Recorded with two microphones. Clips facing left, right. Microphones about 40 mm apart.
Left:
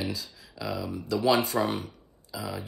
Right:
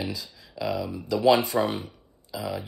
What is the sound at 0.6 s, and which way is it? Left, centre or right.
Speech, centre.